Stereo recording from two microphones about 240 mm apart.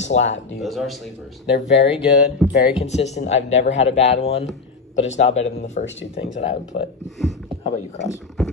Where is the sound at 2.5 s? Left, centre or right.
Left.